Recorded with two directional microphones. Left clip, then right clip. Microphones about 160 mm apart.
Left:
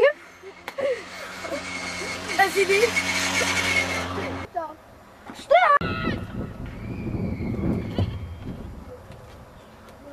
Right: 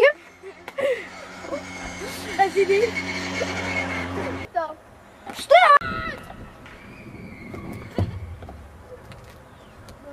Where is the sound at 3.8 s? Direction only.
35° left (ahead or behind).